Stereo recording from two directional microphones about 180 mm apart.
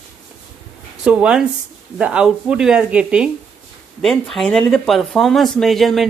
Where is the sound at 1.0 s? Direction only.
5° right (ahead or behind).